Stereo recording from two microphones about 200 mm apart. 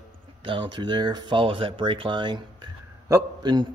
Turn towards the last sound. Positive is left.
turn(degrees=-20)  # may be behind; listen again after turning